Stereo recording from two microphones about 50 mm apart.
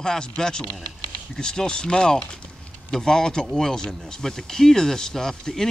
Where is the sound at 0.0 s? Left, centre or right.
Centre.